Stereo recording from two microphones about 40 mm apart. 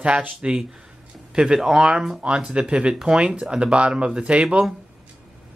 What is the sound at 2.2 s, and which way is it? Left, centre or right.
Speech, right.